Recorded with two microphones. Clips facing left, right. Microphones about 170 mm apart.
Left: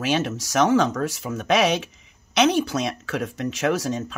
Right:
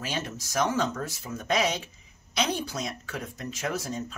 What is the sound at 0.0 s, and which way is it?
Speech, 80° left.